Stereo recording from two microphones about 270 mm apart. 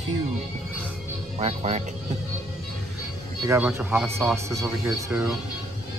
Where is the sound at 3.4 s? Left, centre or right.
Centre.